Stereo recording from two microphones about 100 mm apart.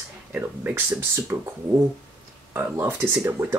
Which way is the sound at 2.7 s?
30° right (ahead or behind).